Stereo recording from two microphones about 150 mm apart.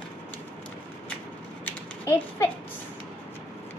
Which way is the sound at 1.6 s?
15° left (ahead or behind).